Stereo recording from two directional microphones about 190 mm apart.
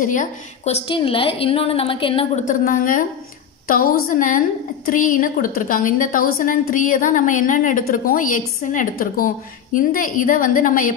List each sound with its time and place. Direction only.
0.0 s a woman's voice: 40° left (ahead or behind)
2.4 s a woman's voice: 45° left (ahead or behind)